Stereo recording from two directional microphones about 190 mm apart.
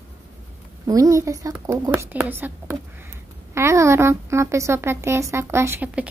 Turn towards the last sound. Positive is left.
turn(degrees=-5)  # may be behind; listen again after turning